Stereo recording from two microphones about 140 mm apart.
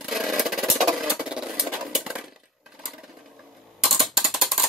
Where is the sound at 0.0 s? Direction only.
Centre (ahead or behind).